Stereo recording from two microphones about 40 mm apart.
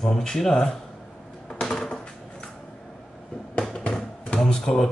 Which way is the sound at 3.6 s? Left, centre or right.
Left.